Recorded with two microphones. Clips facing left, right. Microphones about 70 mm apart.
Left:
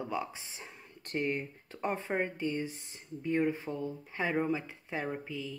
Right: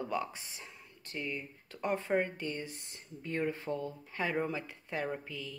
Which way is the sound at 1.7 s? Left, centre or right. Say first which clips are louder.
Right 2 dB; left.